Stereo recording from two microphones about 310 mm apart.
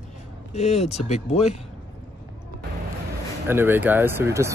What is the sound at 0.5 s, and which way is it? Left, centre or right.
Speech, left.